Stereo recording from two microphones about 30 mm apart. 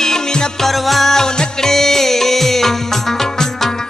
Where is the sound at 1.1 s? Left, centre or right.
Left.